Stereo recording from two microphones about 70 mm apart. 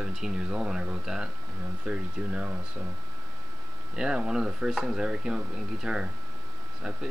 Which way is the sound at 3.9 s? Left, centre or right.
Centre.